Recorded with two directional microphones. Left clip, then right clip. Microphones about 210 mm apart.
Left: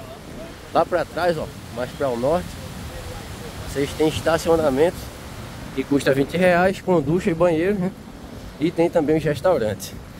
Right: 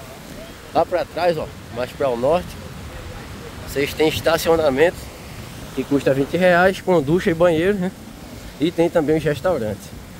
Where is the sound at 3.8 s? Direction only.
25° right (ahead or behind).